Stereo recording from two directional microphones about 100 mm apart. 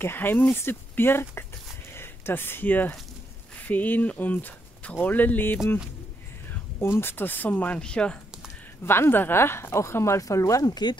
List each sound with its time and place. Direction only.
0.0 s speech: 20° left (ahead or behind)
7.0 s speech: 20° left (ahead or behind)
8.8 s speech: 25° left (ahead or behind); by 11.0 s 45° left (ahead or behind)